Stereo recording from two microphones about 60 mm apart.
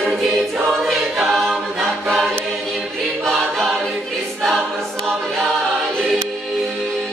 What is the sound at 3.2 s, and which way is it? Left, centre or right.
A capella, centre.